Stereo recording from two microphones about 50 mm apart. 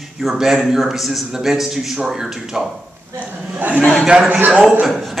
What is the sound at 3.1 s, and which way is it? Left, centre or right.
A man's voice, right.